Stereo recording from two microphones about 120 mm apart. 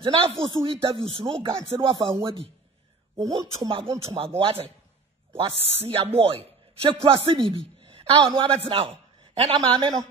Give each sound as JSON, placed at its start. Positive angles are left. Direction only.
{"t": 0.0, "sound": "speech", "side_deg": -50}
{"t": 3.2, "sound": "speech", "side_deg": -35}
{"t": 4.0, "sound": "a man's voice", "side_deg": -55}
{"t": 7.8, "sound": "a sound", "side_deg": -50}
{"t": 8.6, "sound": "speech", "side_deg": -50}